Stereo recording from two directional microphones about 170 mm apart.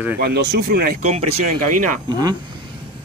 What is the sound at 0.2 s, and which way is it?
Speech, 70° right (ahead or behind).